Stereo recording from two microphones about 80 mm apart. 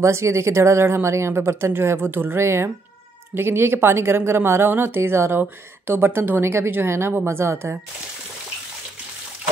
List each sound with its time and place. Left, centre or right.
0.0 s a woman's voice: right